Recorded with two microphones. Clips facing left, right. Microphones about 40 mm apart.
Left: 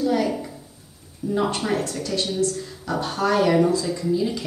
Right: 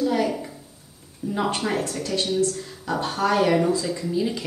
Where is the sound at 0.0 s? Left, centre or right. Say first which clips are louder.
Left 1 dB; centre.